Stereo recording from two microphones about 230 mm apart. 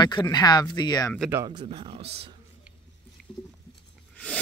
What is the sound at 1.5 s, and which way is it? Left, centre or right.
Speech, right.